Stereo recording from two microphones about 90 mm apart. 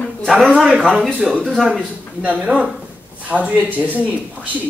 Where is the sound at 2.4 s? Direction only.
15° right (ahead or behind).